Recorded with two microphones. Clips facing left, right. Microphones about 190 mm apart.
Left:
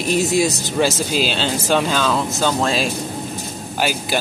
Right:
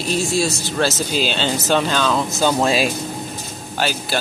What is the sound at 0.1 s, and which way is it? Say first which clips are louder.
Speech: left 3 dB; 20° left (ahead or behind).